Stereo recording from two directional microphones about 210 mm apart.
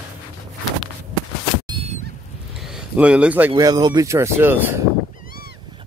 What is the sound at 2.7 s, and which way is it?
Speech, 5° right (ahead or behind).